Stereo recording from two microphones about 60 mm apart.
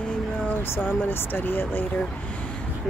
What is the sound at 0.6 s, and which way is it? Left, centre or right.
Speech, left.